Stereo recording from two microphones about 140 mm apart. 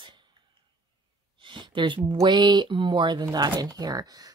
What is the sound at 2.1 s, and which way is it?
A woman's voice, 30° right (ahead or behind).